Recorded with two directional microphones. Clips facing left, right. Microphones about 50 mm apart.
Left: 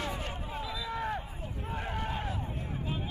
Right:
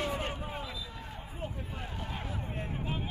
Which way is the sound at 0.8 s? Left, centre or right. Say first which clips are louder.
Left 9 dB; left.